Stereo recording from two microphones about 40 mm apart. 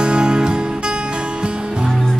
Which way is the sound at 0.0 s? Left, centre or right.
Right.